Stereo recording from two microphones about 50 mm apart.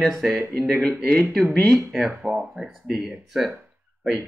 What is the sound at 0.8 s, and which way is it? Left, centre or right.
Speech, left.